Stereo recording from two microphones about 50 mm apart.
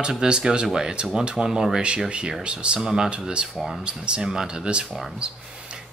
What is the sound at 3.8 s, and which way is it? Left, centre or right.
Speech, centre.